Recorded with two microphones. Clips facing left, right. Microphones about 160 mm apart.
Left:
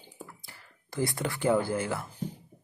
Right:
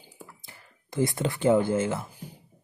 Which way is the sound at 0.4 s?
20° right (ahead or behind).